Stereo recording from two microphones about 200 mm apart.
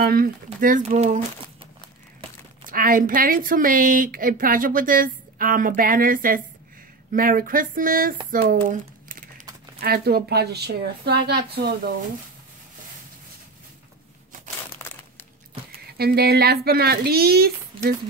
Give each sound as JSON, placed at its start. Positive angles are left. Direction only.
{"t": 0.0, "sound": "speech", "side_deg": -45}
{"t": 2.7, "sound": "a woman's voice", "side_deg": -45}
{"t": 16.0, "sound": "a woman's voice", "side_deg": -50}
{"t": 17.7, "sound": "a sound", "side_deg": -25}